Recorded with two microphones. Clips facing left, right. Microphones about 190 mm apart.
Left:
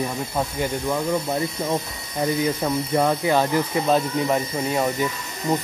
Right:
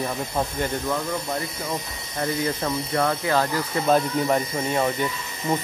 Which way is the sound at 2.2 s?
10° left (ahead or behind).